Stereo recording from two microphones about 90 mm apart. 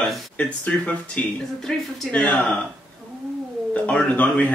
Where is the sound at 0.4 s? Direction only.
15° left (ahead or behind).